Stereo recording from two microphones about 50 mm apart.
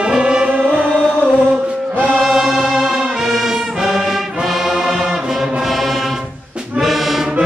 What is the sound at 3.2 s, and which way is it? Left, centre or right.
Brass instrument, centre.